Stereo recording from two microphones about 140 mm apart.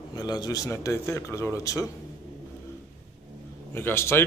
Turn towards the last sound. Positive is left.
turn(degrees=15)  # may be behind; listen again after turning